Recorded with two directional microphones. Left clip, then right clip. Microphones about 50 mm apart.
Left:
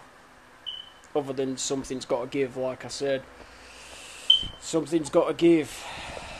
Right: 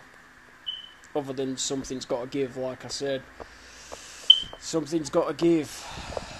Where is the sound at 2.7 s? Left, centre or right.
Left.